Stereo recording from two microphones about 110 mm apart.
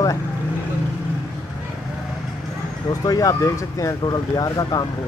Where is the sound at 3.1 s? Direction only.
30° left (ahead or behind).